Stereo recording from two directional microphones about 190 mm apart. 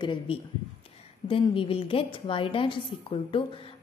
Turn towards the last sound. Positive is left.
turn(degrees=30)  # may be behind; listen again after turning